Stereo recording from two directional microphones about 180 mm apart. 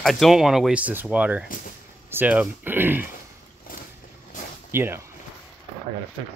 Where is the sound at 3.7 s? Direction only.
50° left (ahead or behind).